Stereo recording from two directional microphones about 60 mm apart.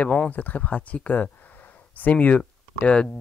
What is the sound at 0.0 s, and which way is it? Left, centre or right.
Speech, left.